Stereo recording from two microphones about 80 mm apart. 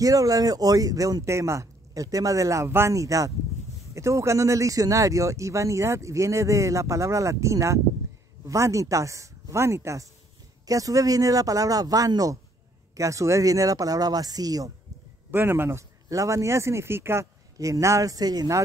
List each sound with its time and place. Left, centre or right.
0.0 s a man's voice: right
15.3 s speech: right
16.1 s speech: right
17.6 s a man's voice: right